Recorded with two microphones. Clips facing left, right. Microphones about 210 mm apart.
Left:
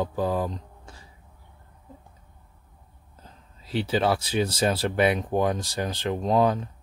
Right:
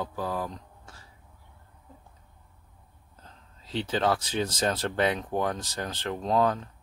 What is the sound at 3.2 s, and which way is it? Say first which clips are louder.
Speech: left 3 dB; 10° left (ahead or behind).